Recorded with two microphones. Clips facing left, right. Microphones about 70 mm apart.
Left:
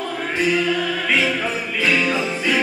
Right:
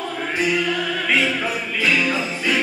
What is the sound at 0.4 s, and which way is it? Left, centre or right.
Music, centre.